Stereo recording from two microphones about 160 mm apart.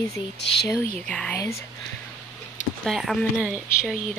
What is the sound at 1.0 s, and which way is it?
Speech, 5° left (ahead or behind).